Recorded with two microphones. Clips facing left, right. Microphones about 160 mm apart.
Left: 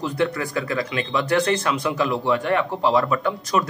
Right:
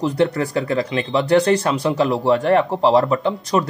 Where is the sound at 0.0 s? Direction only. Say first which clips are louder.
Right 5 dB; 35° right (ahead or behind).